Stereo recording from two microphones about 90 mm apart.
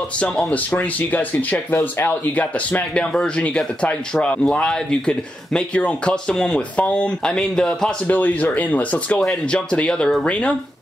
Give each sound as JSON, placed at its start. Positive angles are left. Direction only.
{"t": 0.5, "sound": "speech", "side_deg": 15}
{"t": 8.1, "sound": "speech", "side_deg": 20}